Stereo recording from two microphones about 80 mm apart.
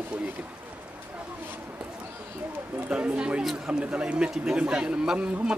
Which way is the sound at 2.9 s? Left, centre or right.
Centre.